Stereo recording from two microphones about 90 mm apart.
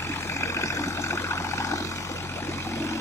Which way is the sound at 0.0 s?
30° left (ahead or behind).